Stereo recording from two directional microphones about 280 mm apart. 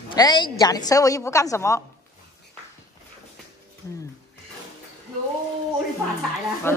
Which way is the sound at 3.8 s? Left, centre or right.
Centre.